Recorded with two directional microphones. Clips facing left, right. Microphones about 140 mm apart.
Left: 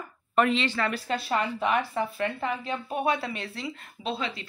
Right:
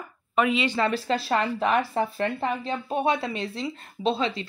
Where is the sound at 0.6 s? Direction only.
25° right (ahead or behind).